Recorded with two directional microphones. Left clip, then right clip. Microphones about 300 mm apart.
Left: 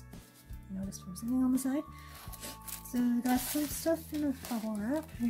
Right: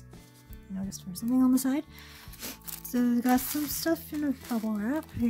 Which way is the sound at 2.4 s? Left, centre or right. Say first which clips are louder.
Right 5 dB; right.